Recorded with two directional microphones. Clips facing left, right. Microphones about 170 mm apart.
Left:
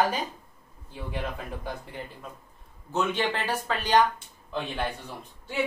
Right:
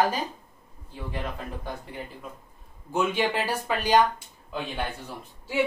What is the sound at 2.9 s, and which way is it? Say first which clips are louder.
Speech: right 2 dB; 10° right (ahead or behind).